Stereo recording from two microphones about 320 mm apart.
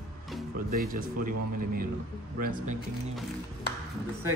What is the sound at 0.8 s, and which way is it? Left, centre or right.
Speech, right.